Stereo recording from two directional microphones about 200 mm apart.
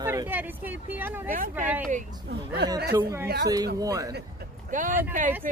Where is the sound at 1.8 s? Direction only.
40° right (ahead or behind).